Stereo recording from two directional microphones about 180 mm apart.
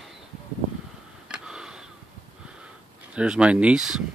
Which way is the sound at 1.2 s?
5° right (ahead or behind).